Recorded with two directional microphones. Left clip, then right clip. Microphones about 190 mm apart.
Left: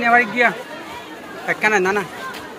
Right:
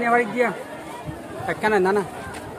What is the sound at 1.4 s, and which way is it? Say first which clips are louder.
Speech: left 3 dB; 20° right (ahead or behind).